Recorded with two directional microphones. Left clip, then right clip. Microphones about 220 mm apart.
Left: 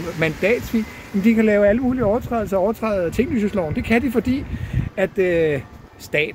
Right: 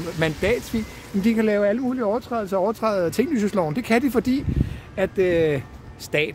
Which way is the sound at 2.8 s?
25° right (ahead or behind).